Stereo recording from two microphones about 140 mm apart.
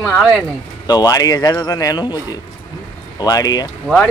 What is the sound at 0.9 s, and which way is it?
Speech, 25° left (ahead or behind).